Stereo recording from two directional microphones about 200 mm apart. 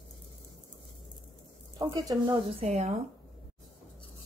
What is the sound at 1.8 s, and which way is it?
Speech, 20° right (ahead or behind).